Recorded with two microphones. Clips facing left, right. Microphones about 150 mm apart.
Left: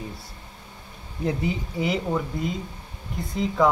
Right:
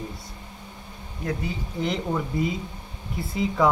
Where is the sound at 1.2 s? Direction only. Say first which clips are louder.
Left 4 dB; 20° left (ahead or behind).